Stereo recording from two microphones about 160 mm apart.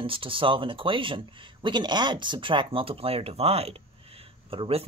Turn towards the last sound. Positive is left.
turn(degrees=-35)  # may be behind; listen again after turning